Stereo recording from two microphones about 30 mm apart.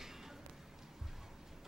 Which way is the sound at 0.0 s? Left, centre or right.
Centre.